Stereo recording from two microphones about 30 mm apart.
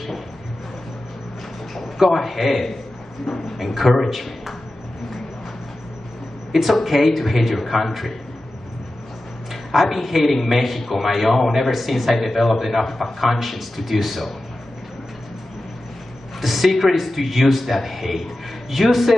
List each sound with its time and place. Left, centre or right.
2.0 s a man's voice: centre
6.5 s a man's voice: centre
9.5 s a man's voice: centre
16.3 s a man's voice: centre